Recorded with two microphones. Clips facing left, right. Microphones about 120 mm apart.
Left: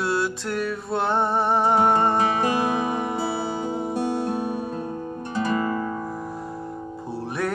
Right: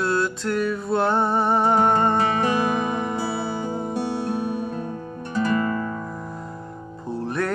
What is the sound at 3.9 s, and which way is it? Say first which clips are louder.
Music: left 1 dB; 15° left (ahead or behind).